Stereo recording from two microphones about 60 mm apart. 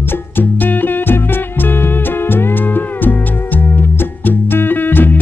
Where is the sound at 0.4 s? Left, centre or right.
Left.